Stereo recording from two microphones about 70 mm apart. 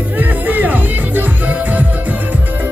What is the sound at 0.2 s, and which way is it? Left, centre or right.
Music, right.